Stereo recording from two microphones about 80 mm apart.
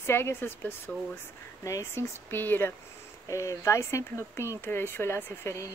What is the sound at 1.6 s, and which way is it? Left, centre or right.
Speech, left.